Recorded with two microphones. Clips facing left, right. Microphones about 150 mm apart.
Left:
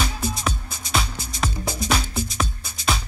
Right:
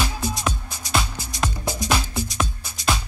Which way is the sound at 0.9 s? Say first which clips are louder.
Right 1 dB; centre (ahead or behind).